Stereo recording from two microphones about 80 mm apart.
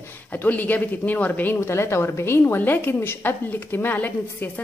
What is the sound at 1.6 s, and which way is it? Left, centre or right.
A woman's voice, left.